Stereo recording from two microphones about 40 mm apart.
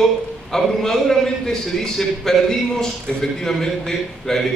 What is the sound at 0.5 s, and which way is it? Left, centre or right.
A man's voice, centre.